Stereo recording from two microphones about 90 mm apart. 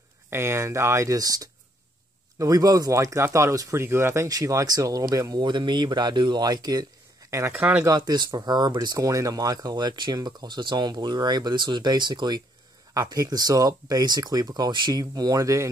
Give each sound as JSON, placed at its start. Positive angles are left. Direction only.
{"t": 0.3, "sound": "speech", "side_deg": -30}
{"t": 5.4, "sound": "speech", "side_deg": -55}
{"t": 7.5, "sound": "speech", "side_deg": -15}
{"t": 7.8, "sound": "speech", "side_deg": -50}
{"t": 12.9, "sound": "speech", "side_deg": -45}